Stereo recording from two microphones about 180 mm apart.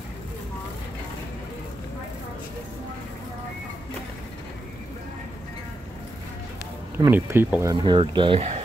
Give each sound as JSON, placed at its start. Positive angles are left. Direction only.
{"t": 7.1, "sound": "speech", "side_deg": -10}
{"t": 7.7, "sound": "speech", "side_deg": -25}